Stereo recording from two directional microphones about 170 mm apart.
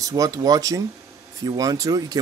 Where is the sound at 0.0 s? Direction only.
20° right (ahead or behind).